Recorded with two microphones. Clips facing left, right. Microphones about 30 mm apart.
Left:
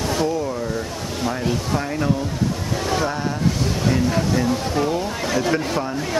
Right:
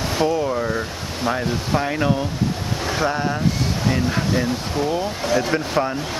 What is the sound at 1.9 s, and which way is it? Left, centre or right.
Speech, right.